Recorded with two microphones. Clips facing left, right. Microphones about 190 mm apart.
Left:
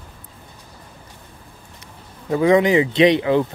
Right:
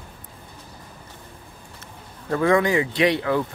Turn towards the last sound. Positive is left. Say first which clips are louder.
# left 6 dB
turn(degrees=20)  # may be behind; listen again after turning